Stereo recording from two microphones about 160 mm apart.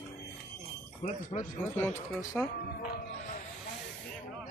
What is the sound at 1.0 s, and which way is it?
Speech, 40° left (ahead or behind).